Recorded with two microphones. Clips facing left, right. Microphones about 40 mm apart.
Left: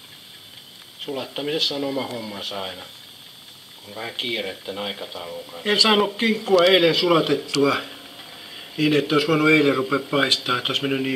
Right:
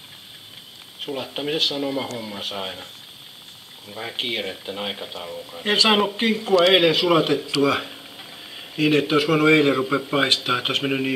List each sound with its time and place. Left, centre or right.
1.0 s speech: centre
6.7 s speech: centre